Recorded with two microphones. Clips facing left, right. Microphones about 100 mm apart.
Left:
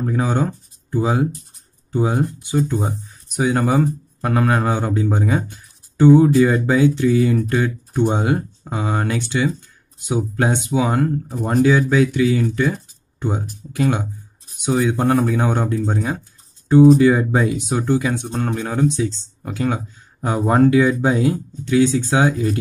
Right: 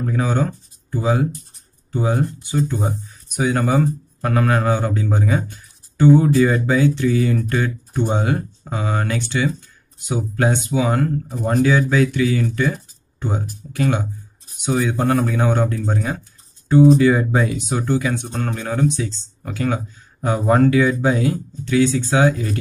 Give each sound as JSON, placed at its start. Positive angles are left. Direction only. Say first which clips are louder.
{"t": 0.0, "sound": "speech", "louder": "left 1 dB", "side_deg": 15}